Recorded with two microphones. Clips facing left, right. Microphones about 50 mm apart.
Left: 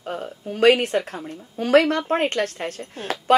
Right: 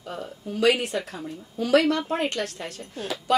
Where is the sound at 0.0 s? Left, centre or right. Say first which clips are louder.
Left 4 dB; left.